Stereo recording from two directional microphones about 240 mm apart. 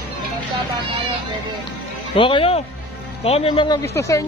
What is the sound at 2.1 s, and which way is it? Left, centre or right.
Speech, left.